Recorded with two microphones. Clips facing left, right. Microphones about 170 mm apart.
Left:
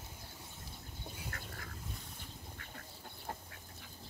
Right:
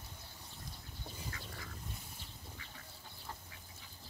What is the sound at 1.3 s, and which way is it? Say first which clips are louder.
Duck: left 2 dB; 50° left (ahead or behind).